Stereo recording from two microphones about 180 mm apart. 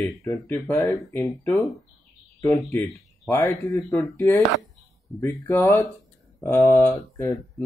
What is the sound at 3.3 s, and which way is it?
Speech, 15° left (ahead or behind).